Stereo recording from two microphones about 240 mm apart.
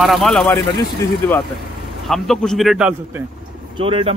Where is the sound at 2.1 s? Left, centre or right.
Centre.